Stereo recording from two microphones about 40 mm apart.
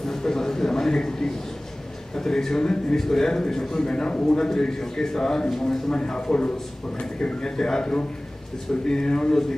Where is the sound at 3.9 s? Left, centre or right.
Left.